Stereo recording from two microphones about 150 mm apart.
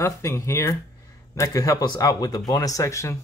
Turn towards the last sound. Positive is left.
turn(degrees=20)  # may be behind; listen again after turning